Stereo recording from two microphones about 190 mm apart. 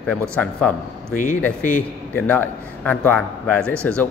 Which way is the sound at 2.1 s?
10° left (ahead or behind).